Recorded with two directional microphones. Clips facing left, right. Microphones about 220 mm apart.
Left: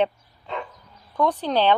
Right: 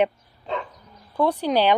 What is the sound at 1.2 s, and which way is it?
Speech, 10° right (ahead or behind).